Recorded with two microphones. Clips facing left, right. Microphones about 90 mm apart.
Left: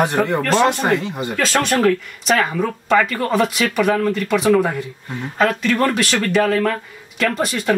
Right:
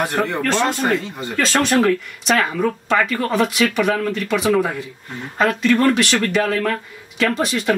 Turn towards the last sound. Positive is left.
turn(degrees=0)  # may be behind; listen again after turning